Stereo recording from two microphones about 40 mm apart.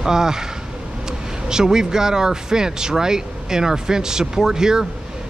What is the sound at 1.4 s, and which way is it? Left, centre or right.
Speech, centre.